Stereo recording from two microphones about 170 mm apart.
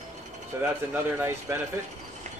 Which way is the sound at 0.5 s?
15° right (ahead or behind).